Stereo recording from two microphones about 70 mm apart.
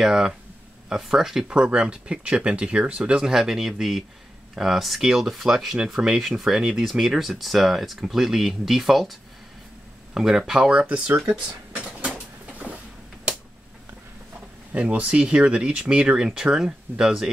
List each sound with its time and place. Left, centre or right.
0.0 s speech: centre
10.1 s speech: centre
11.2 s dishes: centre
14.7 s speech: right